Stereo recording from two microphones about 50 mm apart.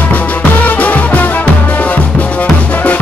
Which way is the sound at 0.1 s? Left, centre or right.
Left.